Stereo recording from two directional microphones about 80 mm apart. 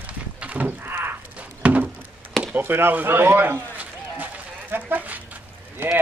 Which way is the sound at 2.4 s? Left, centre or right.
Right.